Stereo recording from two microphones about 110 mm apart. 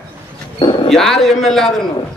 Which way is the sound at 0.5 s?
50° left (ahead or behind).